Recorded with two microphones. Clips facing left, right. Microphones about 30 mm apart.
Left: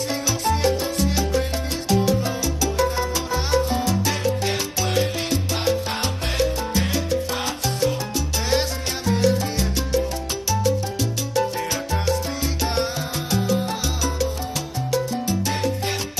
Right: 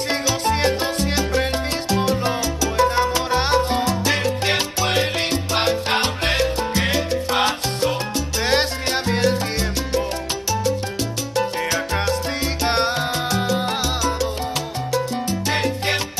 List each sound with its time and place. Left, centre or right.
0.1 s music: right
1.9 s salsa music: right
2.8 s music: right
4.1 s salsa music: right
5.9 s music: right
6.8 s salsa music: right
11.0 s salsa music: right
12.4 s music: right
15.5 s salsa music: right